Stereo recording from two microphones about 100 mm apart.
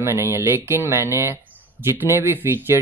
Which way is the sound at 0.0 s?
25° right (ahead or behind).